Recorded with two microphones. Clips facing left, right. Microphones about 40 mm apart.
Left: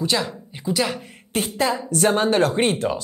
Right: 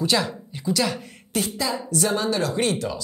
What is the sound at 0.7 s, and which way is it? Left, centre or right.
Speech, centre.